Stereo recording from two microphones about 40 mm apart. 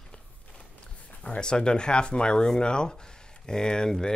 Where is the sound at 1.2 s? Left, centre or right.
Left.